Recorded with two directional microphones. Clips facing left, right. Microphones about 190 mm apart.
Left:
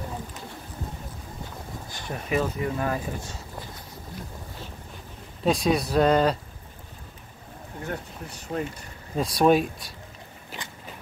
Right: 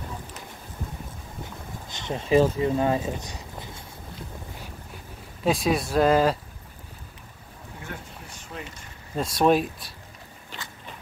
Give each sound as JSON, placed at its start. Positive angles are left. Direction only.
{"t": 1.9, "sound": "speech", "side_deg": -20}
{"t": 5.4, "sound": "speech", "side_deg": 0}
{"t": 7.8, "sound": "speech", "side_deg": 40}
{"t": 9.1, "sound": "speech", "side_deg": 0}